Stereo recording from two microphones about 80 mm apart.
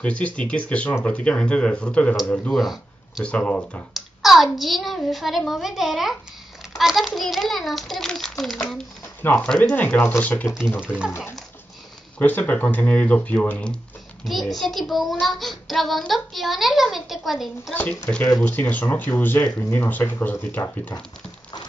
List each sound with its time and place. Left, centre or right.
0.0 s speech: centre
3.9 s a child's voice: centre
9.8 s speech: left
10.8 s speech: centre
11.1 s speech: left; by 13.7 s centre
14.2 s a child's voice: centre
18.1 s speech: centre
20.6 s speech: left